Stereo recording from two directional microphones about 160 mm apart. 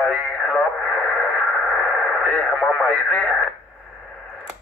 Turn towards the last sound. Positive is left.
turn(degrees=5)  # may be behind; listen again after turning